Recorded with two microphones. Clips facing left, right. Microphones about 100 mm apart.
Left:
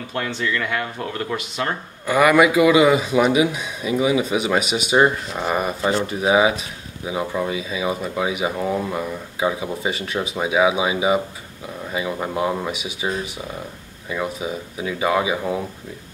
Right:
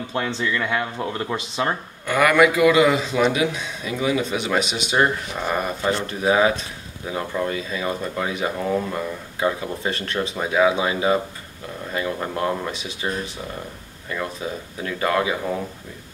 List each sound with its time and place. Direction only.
0.1 s speech: 20° right (ahead or behind)
2.0 s a man's voice: 5° left (ahead or behind)